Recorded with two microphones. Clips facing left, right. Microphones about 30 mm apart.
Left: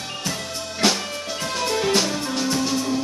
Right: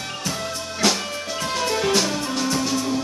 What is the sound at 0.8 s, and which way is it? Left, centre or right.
Music, centre.